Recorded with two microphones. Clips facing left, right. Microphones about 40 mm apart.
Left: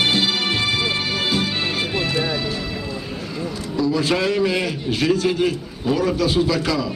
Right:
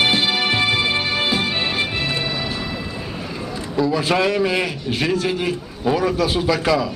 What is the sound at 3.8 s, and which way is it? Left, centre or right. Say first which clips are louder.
A man's voice: right 1 dB; right.